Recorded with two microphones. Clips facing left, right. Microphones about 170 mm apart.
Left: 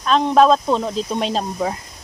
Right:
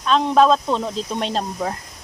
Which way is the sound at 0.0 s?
5° left (ahead or behind).